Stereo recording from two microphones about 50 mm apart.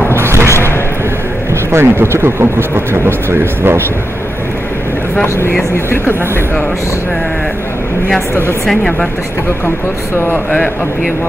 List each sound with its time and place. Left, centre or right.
0.1 s a sound: right
1.7 s speech: right
10.1 s speech: left